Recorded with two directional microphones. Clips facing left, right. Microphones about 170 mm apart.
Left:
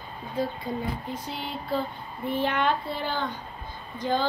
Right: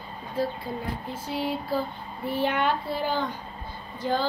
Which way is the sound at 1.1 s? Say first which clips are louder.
Right 5 dB; 5° right (ahead or behind).